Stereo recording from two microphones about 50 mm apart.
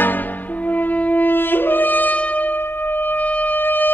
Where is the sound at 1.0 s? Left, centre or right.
Left.